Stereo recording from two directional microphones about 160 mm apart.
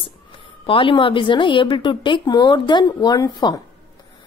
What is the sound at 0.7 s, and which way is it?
A woman's voice, 30° left (ahead or behind).